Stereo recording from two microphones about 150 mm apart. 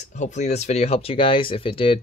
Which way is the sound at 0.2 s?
50° left (ahead or behind).